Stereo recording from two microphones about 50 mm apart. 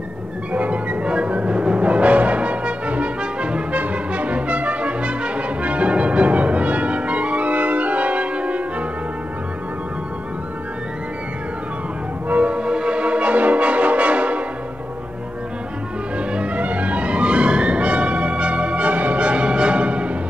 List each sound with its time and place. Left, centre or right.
0.5 s music: right
3.8 s brass instrument: right
12.3 s music: right
16.2 s music: right